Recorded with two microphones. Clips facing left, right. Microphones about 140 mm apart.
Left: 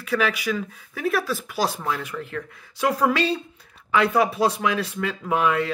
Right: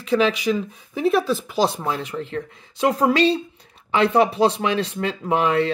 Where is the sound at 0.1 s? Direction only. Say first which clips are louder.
Right 5 dB; 20° right (ahead or behind).